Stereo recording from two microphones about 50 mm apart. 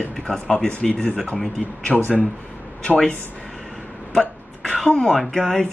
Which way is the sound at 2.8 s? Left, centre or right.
Centre.